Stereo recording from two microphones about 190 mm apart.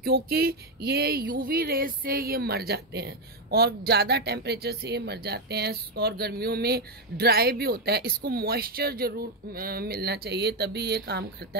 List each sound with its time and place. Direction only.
0.0 s speech: 55° right (ahead or behind)